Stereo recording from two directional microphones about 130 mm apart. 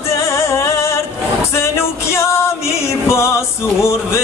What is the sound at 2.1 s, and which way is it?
Music, 20° left (ahead or behind).